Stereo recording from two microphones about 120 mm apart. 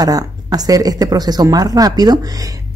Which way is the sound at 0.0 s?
30° right (ahead or behind).